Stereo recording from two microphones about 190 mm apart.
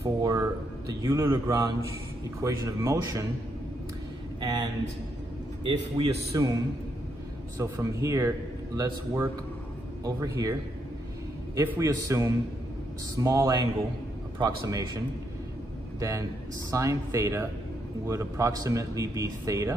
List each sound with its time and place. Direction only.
0.0 s a man's voice: 15° right (ahead or behind)
4.4 s speech: 20° right (ahead or behind)
7.5 s a man's voice: 15° right (ahead or behind)
11.5 s a man's voice: 15° right (ahead or behind)
16.0 s a man's voice: 15° right (ahead or behind)